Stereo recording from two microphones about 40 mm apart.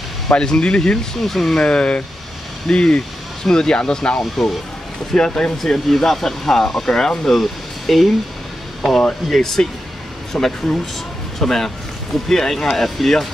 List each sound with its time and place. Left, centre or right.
0.3 s speech: left
1.2 s speech: centre
1.6 s speech: left
5.6 s speech: centre
9.3 s speech: centre